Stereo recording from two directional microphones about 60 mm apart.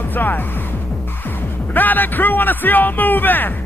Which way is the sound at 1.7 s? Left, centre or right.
Left.